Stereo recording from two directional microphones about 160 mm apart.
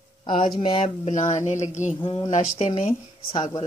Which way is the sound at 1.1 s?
50° left (ahead or behind).